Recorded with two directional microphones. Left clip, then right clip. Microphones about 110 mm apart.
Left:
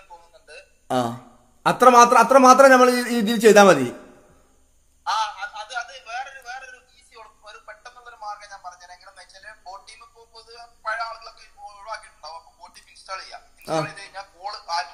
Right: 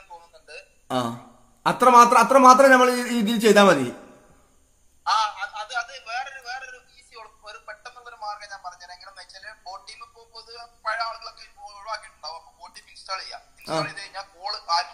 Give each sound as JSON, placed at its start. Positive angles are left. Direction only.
{"t": 0.1, "sound": "music", "side_deg": 0}
{"t": 0.8, "sound": "a man's voice", "side_deg": 25}
{"t": 5.0, "sound": "a sound", "side_deg": 0}